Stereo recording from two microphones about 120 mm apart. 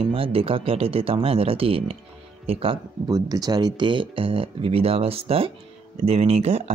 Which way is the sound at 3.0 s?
30° right (ahead or behind).